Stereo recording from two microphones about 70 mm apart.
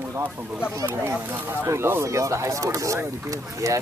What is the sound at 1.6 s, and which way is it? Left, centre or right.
Speech, right.